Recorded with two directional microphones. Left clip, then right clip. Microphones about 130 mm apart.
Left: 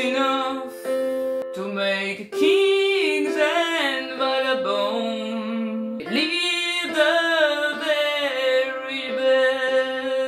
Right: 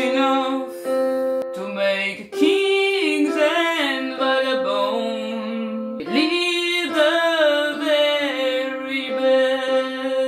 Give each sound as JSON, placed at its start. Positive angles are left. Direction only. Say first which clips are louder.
{"t": 0.9, "sound": "music", "louder": "right 4 dB", "side_deg": -35}
{"t": 1.8, "sound": "singing", "louder": "right 3 dB", "side_deg": 25}
{"t": 6.7, "sound": "music", "louder": "right 1 dB", "side_deg": 25}